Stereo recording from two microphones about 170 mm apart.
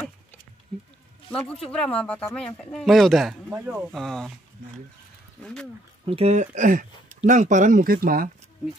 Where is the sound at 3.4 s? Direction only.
10° right (ahead or behind).